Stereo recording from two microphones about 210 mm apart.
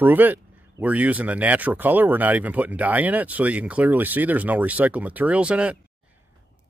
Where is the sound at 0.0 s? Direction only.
10° right (ahead or behind).